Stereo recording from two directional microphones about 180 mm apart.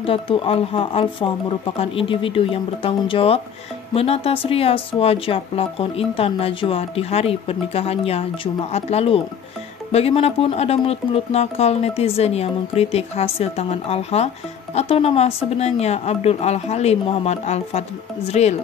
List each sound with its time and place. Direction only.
0.0 s a woman's voice: 30° left (ahead or behind)